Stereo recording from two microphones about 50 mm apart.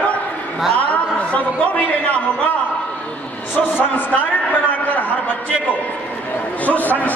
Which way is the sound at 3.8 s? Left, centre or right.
Left.